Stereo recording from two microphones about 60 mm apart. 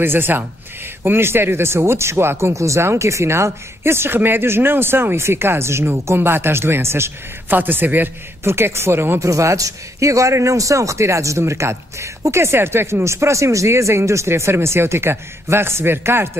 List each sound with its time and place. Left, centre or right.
0.0 s a man's voice: right
2.5 s a man's voice: right
7.5 s a man's voice: right
8.5 s a man's voice: right
9.2 s a man's voice: right